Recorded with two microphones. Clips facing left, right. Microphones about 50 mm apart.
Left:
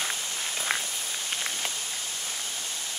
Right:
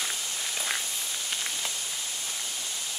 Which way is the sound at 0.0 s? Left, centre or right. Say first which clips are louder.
Left 2 dB; left.